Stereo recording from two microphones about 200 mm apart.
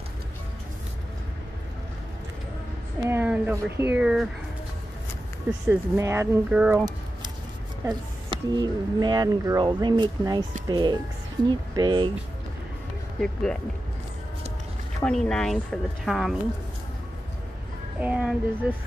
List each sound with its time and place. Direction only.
3.1 s speech: 10° right (ahead or behind)
5.7 s speech: 15° right (ahead or behind)
7.8 s a woman's voice: 20° right (ahead or behind)
13.2 s a woman's voice: 5° left (ahead or behind)
15.0 s a woman's voice: 5° left (ahead or behind)
18.0 s a woman's voice: 5° right (ahead or behind)